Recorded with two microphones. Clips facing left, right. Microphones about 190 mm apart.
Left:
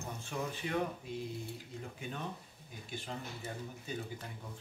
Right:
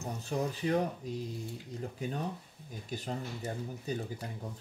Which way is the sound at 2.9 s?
40° right (ahead or behind).